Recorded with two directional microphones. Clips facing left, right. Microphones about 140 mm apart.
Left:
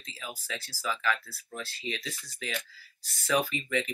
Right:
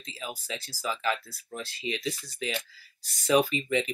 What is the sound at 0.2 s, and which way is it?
Speech, 20° right (ahead or behind).